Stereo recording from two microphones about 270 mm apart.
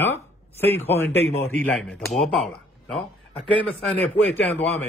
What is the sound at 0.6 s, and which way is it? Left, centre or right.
A man's voice, centre.